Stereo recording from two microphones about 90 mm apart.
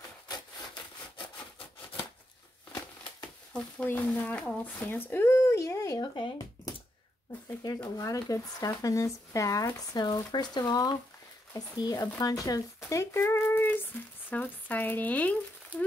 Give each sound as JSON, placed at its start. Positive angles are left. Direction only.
{"t": 3.2, "sound": "speech", "side_deg": 15}
{"t": 7.6, "sound": "speech", "side_deg": 30}
{"t": 9.9, "sound": "speech", "side_deg": 50}
{"t": 12.8, "sound": "a sound", "side_deg": 30}
{"t": 14.3, "sound": "speech", "side_deg": 20}